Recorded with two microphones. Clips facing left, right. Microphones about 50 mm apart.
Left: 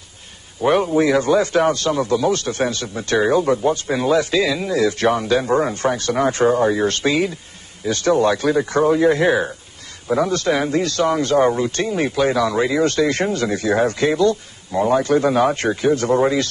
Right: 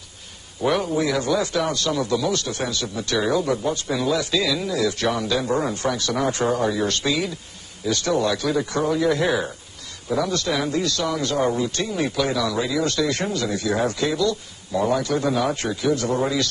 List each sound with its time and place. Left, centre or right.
0.7 s a man's voice: left